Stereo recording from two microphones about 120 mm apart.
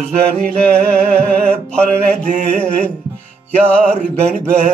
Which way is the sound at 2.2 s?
70° right (ahead or behind).